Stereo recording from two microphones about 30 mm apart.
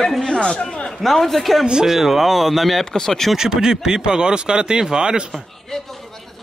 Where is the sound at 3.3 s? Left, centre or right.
Right.